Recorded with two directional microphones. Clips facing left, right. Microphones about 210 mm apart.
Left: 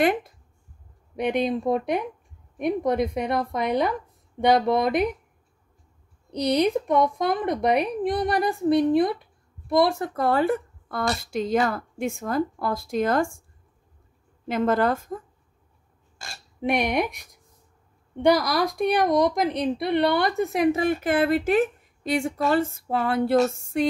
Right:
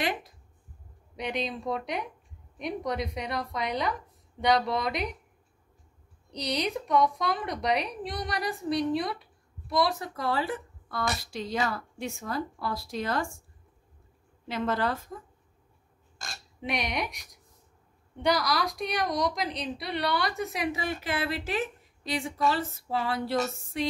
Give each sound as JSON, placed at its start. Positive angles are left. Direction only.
{"t": 0.0, "sound": "a woman's voice", "side_deg": 55}
{"t": 6.3, "sound": "a woman's voice", "side_deg": 55}
{"t": 14.5, "sound": "a woman's voice", "side_deg": 50}
{"t": 16.6, "sound": "a woman's voice", "side_deg": 55}